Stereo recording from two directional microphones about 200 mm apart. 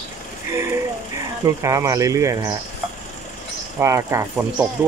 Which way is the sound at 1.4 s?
15° right (ahead or behind).